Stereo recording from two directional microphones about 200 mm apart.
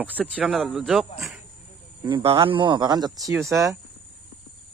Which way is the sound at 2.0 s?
25° right (ahead or behind).